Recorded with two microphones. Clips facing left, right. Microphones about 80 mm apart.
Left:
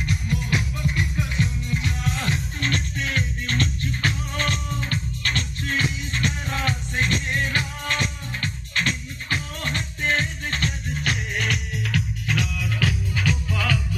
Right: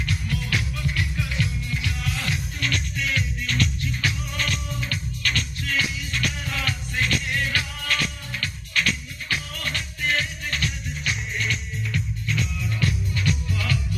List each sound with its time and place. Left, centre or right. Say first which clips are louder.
0.0 s music: left 2 dB; left